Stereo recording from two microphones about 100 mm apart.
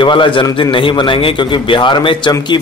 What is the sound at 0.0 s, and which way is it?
A man's voice, 55° left (ahead or behind).